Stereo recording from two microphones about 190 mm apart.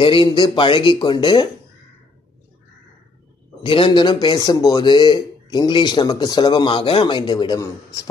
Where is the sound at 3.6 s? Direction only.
30° left (ahead or behind).